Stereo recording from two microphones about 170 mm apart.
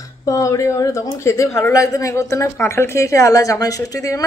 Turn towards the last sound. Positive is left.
turn(degrees=20)  # may be behind; listen again after turning